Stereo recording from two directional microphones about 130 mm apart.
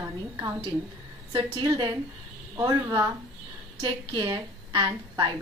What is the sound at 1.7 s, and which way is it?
A woman's voice, 30° right (ahead or behind).